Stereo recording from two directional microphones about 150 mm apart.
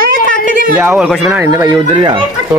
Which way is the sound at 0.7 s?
10° right (ahead or behind).